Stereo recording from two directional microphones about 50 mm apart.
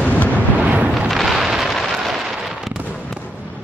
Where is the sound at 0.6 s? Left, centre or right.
Right.